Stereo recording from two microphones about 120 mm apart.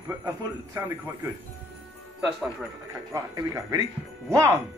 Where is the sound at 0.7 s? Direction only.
20° right (ahead or behind).